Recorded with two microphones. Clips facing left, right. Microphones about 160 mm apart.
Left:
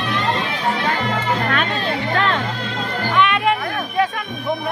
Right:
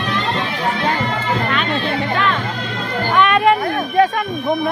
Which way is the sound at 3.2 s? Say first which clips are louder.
Right 4 dB; 45° right (ahead or behind).